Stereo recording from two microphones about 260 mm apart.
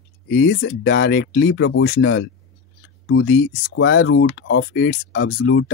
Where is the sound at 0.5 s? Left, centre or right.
Left.